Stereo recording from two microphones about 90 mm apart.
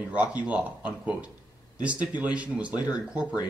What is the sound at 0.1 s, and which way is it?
Speech, 15° right (ahead or behind).